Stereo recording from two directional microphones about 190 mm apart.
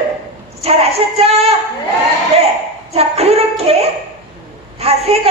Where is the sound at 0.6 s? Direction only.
30° right (ahead or behind).